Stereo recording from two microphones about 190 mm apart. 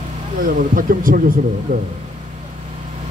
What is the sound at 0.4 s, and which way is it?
A man's voice, 45° right (ahead or behind).